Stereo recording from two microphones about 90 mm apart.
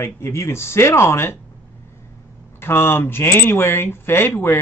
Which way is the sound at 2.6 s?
25° left (ahead or behind).